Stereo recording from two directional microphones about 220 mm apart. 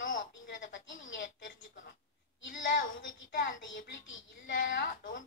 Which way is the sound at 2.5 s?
35° left (ahead or behind).